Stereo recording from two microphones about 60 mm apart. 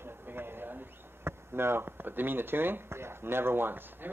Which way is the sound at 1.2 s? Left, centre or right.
Right.